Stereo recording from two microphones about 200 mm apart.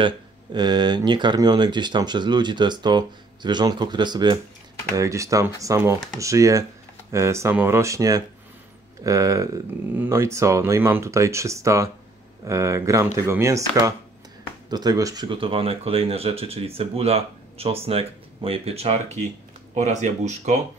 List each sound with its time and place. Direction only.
0.0 s speech: 20° right (ahead or behind)